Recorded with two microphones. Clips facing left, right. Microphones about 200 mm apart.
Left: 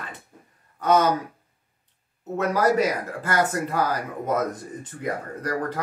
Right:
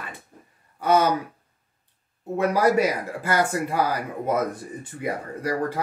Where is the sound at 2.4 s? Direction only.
10° right (ahead or behind).